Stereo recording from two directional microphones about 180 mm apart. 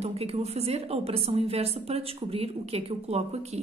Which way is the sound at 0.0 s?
35° right (ahead or behind).